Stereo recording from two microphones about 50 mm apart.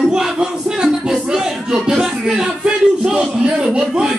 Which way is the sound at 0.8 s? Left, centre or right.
Centre.